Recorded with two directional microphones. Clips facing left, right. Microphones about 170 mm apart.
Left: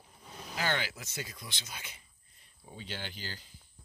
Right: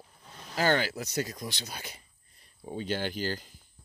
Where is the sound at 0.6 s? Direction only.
40° right (ahead or behind).